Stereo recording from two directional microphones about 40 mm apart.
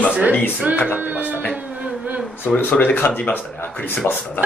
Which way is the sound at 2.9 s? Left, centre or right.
Left.